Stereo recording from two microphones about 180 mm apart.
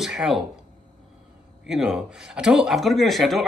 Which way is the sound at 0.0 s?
Centre (ahead or behind).